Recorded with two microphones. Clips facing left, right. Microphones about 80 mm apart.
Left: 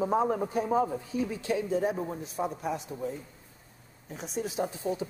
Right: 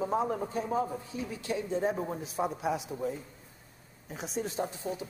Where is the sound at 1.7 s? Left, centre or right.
Centre.